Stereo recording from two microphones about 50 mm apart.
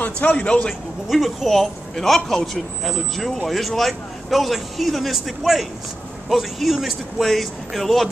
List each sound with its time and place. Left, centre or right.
0.0 s a man's voice: left
1.0 s speech: centre